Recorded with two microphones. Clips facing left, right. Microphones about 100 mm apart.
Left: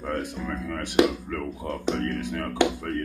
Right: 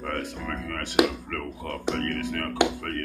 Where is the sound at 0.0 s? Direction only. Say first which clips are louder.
Left 2 dB; 20° left (ahead or behind).